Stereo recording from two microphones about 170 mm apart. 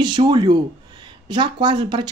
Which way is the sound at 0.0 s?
25° right (ahead or behind).